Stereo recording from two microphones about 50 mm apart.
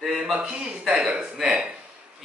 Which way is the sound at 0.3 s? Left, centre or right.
Right.